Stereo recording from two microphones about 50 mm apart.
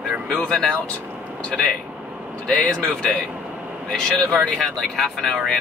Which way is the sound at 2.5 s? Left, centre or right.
Centre.